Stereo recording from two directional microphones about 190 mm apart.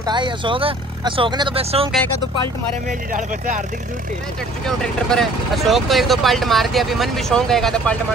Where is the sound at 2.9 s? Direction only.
40° right (ahead or behind).